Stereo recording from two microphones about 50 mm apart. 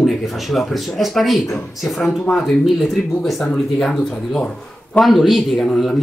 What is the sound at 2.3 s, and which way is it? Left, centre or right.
Speech, left.